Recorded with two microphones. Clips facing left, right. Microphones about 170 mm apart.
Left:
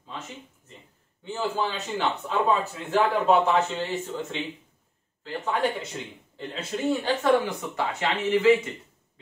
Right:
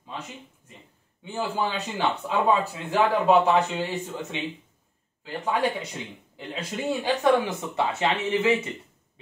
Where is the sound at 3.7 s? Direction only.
15° right (ahead or behind).